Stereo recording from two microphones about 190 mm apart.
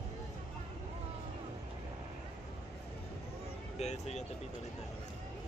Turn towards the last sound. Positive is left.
turn(degrees=35)  # may be behind; listen again after turning